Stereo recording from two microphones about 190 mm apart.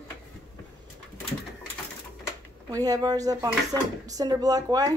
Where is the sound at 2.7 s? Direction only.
20° right (ahead or behind).